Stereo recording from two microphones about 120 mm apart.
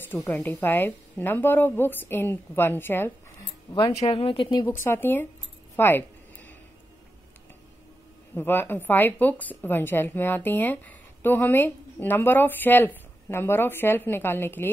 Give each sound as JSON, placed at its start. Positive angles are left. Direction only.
{"t": 0.0, "sound": "a woman's voice", "side_deg": 15}
{"t": 3.9, "sound": "speech", "side_deg": 55}
{"t": 4.6, "sound": "speech", "side_deg": 20}
{"t": 5.8, "sound": "a sound", "side_deg": 15}
{"t": 8.4, "sound": "a woman's voice", "side_deg": 15}